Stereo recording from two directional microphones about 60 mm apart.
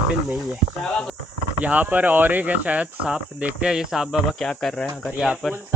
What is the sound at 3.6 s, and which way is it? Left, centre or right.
Speech, centre.